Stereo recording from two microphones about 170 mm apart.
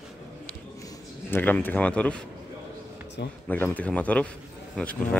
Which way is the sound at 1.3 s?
10° left (ahead or behind).